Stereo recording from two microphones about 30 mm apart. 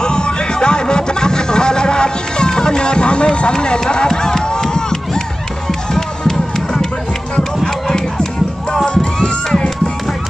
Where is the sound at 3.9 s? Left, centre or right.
Left.